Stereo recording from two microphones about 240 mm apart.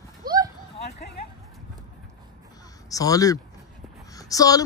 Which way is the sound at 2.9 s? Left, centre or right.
Centre.